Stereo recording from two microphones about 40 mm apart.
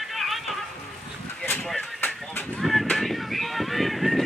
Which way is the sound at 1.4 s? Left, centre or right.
Left.